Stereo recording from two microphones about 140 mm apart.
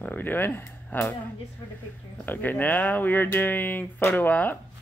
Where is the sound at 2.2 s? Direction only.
15° left (ahead or behind).